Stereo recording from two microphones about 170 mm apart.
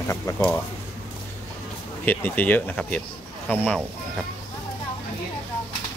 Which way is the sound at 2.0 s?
10° left (ahead or behind).